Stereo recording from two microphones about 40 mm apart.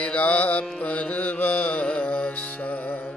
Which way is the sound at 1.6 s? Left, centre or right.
Left.